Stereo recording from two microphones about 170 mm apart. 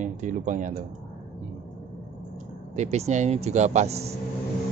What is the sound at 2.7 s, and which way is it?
Speech, 40° right (ahead or behind).